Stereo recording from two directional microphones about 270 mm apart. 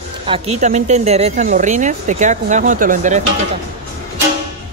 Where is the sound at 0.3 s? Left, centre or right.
Right.